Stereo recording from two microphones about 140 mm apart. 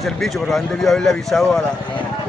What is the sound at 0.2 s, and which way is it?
Speech, centre (ahead or behind).